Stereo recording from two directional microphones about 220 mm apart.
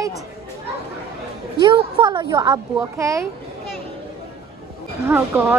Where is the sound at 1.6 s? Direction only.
20° right (ahead or behind).